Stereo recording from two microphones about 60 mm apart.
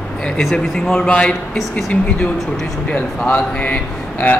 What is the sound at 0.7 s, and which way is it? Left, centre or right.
Speech, centre.